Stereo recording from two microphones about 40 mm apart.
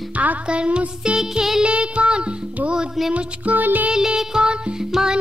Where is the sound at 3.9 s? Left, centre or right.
Centre.